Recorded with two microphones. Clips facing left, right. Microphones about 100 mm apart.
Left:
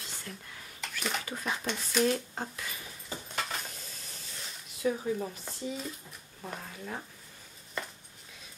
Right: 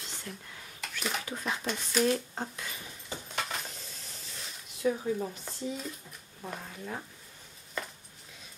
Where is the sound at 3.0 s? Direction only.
Centre (ahead or behind).